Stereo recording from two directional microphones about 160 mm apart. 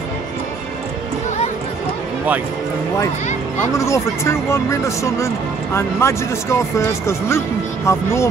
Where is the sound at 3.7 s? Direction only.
20° left (ahead or behind).